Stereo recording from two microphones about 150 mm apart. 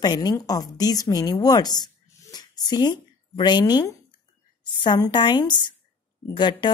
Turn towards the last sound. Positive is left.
turn(degrees=30)  # may be behind; listen again after turning